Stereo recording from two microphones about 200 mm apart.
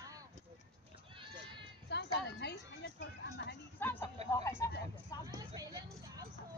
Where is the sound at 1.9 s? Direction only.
55° left (ahead or behind).